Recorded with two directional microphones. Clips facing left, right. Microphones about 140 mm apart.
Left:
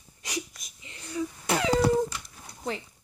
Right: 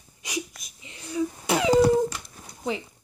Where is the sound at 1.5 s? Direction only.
15° right (ahead or behind).